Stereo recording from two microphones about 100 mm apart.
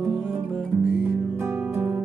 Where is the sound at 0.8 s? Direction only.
5° right (ahead or behind).